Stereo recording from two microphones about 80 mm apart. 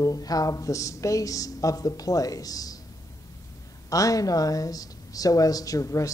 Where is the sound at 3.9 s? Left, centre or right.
Left.